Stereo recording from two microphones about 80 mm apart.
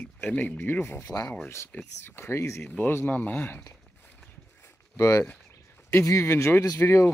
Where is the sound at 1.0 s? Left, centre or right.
Left.